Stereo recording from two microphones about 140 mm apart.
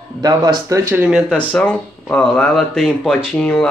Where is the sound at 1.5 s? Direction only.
10° left (ahead or behind).